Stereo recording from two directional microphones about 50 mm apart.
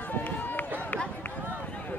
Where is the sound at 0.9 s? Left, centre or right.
Left.